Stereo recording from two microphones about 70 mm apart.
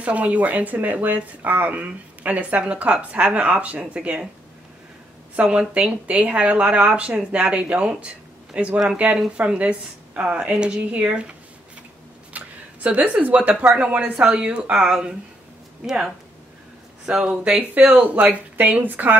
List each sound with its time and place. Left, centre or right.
0.0 s speech: right
5.3 s speech: centre